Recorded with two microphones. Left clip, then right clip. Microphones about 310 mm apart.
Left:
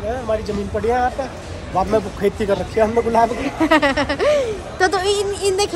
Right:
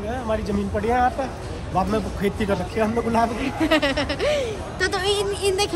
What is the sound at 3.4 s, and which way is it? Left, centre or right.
Speech, centre.